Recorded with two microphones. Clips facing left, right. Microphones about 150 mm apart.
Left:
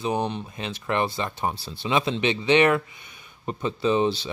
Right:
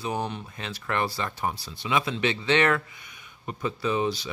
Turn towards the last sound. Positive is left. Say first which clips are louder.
# left 4 dB
turn(degrees=30)  # may be behind; listen again after turning